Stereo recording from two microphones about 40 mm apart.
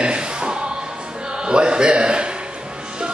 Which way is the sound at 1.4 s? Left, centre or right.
Right.